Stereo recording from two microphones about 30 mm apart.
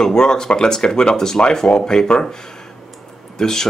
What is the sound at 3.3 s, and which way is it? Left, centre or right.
Speech, centre.